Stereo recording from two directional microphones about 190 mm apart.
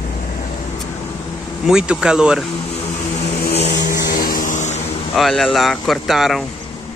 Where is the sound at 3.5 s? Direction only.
40° left (ahead or behind).